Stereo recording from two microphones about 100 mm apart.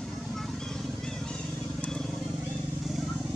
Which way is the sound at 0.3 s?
5° left (ahead or behind).